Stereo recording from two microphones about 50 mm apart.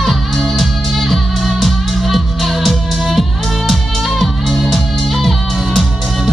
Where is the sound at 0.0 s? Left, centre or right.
Centre.